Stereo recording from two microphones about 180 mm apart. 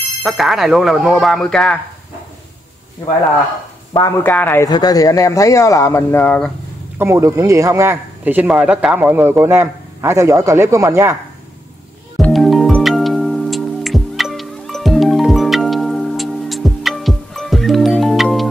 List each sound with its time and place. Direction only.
0.2 s speech: centre (ahead or behind)
4.2 s speech: 10° left (ahead or behind)
7.0 s a man's voice: 15° right (ahead or behind)
12.2 s music: centre (ahead or behind)